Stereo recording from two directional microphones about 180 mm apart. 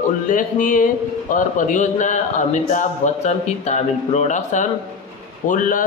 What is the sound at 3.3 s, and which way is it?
Speech, 40° left (ahead or behind).